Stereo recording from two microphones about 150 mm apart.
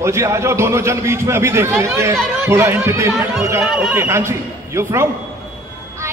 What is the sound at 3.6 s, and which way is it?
Speech, centre (ahead or behind).